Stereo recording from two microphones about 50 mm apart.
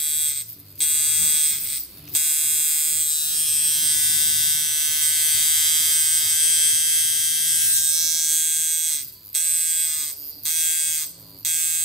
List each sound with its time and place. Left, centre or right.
0.0 s electric shaver: centre